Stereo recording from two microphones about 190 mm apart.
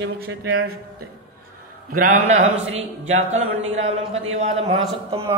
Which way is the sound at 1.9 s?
45° right (ahead or behind).